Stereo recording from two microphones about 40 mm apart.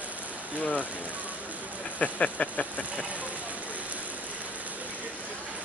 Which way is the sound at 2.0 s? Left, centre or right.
Left.